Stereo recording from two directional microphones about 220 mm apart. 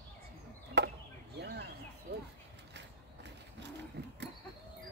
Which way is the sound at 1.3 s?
50° right (ahead or behind).